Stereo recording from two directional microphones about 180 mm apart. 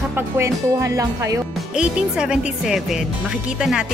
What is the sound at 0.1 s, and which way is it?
Music, 15° right (ahead or behind).